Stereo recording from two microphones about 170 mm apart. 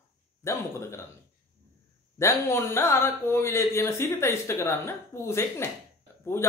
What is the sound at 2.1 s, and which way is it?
Speech, 15° left (ahead or behind).